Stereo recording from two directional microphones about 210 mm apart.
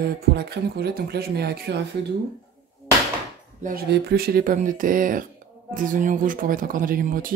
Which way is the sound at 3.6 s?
50° right (ahead or behind).